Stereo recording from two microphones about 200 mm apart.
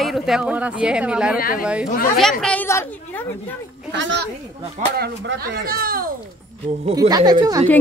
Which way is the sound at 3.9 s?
65° right (ahead or behind).